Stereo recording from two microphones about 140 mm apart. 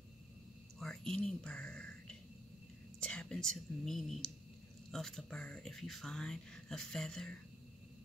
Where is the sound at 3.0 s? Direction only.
5° left (ahead or behind).